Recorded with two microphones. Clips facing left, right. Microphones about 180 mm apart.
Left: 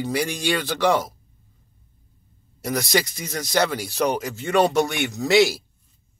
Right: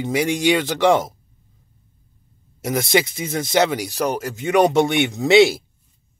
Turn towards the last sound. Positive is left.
turn(degrees=-25)  # may be behind; listen again after turning